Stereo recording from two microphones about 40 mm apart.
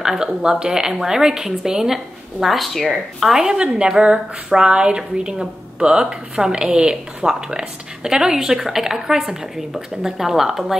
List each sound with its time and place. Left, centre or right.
0.0 s a woman's voice: centre
2.4 s speech: centre
3.3 s a woman's voice: right